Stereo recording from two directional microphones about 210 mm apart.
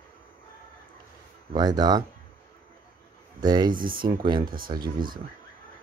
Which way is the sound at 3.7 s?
40° right (ahead or behind).